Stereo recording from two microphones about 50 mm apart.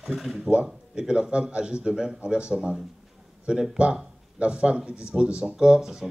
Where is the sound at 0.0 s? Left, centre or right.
Centre.